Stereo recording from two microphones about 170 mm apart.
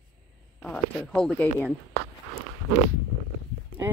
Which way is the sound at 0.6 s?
5° left (ahead or behind).